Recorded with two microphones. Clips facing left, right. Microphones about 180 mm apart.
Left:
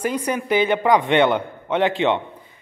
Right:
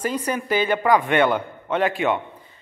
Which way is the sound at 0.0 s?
10° left (ahead or behind).